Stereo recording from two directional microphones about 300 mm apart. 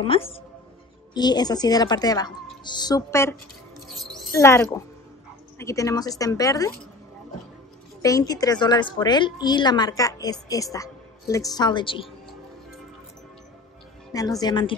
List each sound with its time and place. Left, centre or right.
0.0 s a woman's voice: centre
3.9 s a sound: centre
5.6 s a woman's voice: centre
8.0 s a woman's voice: centre
14.4 s a woman's voice: centre